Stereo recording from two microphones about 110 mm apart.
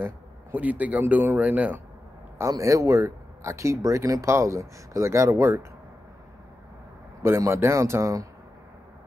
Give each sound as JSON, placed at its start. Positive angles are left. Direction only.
{"t": 0.0, "sound": "speech", "side_deg": -15}
{"t": 2.3, "sound": "speech", "side_deg": -30}
{"t": 7.2, "sound": "speech", "side_deg": -25}